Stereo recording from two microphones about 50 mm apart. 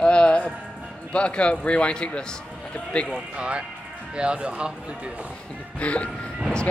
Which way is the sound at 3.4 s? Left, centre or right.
Right.